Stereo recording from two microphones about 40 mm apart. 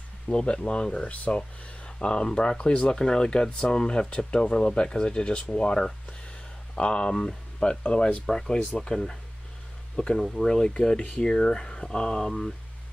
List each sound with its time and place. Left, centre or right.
0.3 s speech: centre
8.3 s speech: centre
10.1 s speech: centre
11.0 s speech: left
12.1 s speech: centre